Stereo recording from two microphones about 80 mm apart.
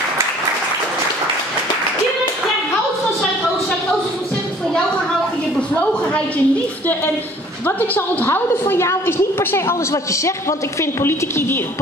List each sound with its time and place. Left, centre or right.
5.8 s a sound: centre
7.6 s a woman's voice: left
10.8 s a woman's voice: left